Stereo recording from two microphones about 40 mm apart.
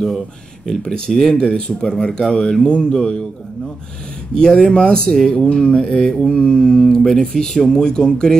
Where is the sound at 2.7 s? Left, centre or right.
Centre.